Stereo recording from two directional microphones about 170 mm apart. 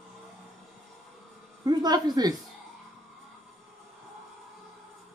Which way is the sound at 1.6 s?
25° right (ahead or behind).